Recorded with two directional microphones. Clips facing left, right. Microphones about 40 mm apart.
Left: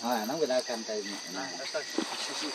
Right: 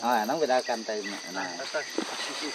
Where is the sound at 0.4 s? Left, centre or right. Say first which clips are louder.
Right 4 dB; right.